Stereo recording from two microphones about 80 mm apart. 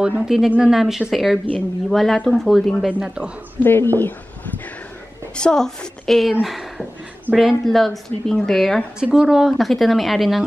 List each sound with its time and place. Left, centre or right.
0.0 s speech: centre
2.9 s speech: centre
3.6 s speech: left
5.3 s a woman's voice: centre
9.0 s speech: centre